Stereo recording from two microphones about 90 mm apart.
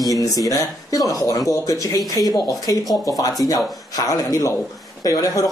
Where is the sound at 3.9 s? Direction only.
40° left (ahead or behind).